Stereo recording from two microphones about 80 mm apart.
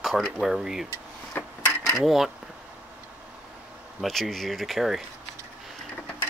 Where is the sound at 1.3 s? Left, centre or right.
Left.